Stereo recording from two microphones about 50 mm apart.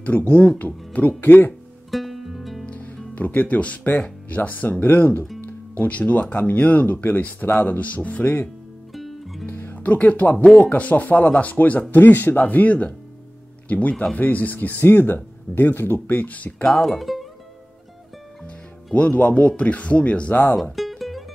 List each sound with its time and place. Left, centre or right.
0.0 s speech: left
1.9 s music: centre
3.2 s speech: left
8.9 s music: centre
9.5 s music: left
9.8 s speech: left
16.6 s speech: centre
17.0 s music: centre
18.9 s speech: left
20.7 s music: centre